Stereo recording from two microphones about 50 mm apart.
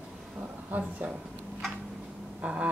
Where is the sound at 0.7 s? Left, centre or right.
Right.